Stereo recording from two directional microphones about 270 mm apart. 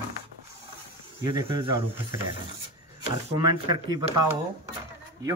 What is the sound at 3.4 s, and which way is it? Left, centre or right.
Speech, centre.